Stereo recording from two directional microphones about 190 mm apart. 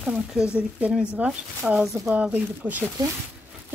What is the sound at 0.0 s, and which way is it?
Speech, 5° right (ahead or behind).